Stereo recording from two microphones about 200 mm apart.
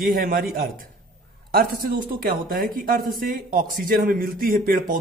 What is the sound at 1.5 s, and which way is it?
A man's voice, 50° right (ahead or behind).